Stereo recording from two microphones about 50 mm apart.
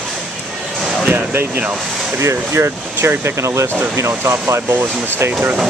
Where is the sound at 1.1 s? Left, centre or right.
Right.